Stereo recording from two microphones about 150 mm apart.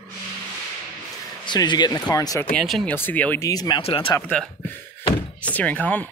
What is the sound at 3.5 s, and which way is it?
Speech, 25° left (ahead or behind).